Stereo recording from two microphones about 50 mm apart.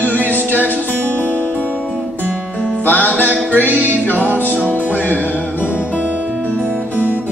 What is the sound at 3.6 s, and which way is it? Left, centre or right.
Music, right.